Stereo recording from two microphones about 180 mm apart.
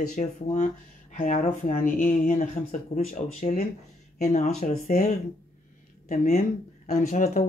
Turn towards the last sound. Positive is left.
turn(degrees=45)  # may be behind; listen again after turning